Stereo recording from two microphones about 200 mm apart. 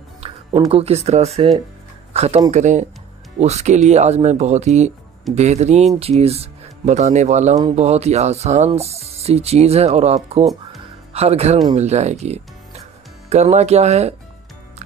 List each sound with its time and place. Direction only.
0.2 s music: 30° right (ahead or behind)
0.7 s speech: 30° right (ahead or behind)
10.4 s speech: centre (ahead or behind)
11.1 s speech: 30° right (ahead or behind)